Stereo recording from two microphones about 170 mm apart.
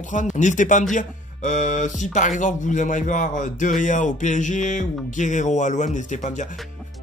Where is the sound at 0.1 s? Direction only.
45° left (ahead or behind).